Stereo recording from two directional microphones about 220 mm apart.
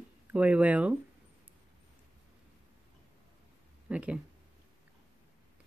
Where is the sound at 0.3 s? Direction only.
5° right (ahead or behind).